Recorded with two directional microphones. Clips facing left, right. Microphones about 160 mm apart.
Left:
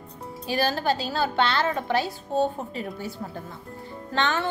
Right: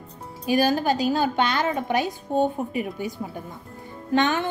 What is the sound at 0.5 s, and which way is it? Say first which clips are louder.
A woman's voice: right 4 dB; 15° right (ahead or behind).